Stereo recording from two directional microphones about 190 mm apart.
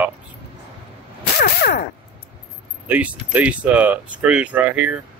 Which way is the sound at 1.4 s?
55° left (ahead or behind).